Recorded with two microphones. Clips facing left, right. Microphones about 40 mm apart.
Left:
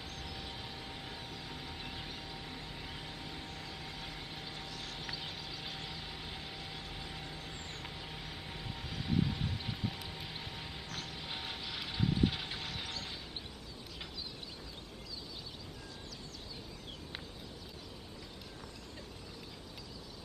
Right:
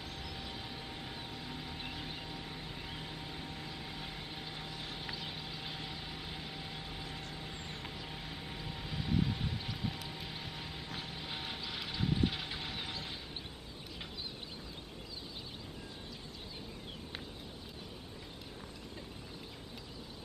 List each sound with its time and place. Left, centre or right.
0.2 s vehicle: centre
10.9 s vehicle: centre
11.1 s vehicle: centre